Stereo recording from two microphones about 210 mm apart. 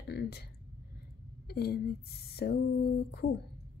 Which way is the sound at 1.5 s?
50° left (ahead or behind).